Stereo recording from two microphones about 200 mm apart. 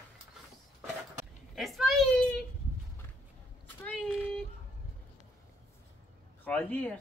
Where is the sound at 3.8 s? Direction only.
5° left (ahead or behind).